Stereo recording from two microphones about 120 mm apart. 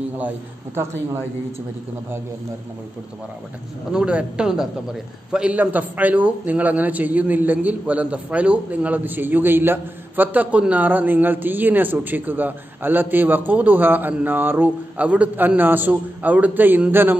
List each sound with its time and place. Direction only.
0.7 s speech: 20° right (ahead or behind)
3.9 s a man's voice: 10° right (ahead or behind)